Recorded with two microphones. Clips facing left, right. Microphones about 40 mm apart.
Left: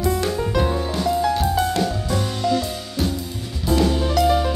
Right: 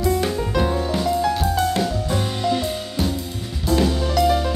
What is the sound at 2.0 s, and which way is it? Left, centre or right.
Music, right.